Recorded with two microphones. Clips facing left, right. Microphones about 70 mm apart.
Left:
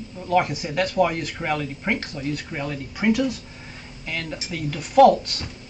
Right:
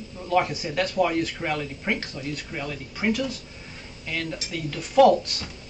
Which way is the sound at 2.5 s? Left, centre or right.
Left.